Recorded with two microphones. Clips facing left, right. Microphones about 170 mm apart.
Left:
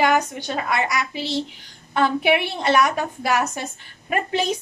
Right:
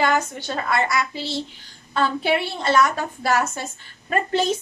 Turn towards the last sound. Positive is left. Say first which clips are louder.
# right 1 dB
turn(degrees=15)  # may be behind; listen again after turning